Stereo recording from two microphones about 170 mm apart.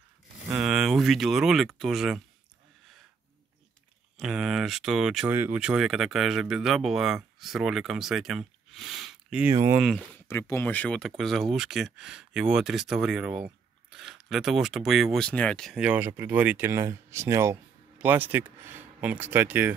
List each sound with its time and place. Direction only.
0.6 s speech: centre (ahead or behind)
4.2 s speech: centre (ahead or behind)
9.5 s speech: 15° right (ahead or behind)
9.8 s speech: 5° left (ahead or behind); by 19.7 s 10° right (ahead or behind)